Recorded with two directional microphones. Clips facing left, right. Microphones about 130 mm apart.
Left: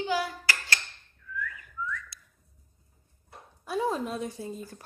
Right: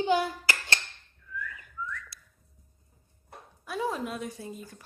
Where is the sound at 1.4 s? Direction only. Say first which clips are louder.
Left 2 dB; 25° right (ahead or behind).